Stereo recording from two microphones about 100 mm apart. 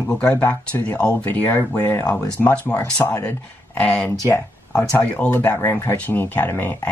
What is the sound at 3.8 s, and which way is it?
Speech, 10° left (ahead or behind).